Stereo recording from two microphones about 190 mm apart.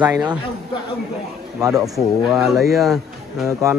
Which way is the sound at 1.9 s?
Centre (ahead or behind).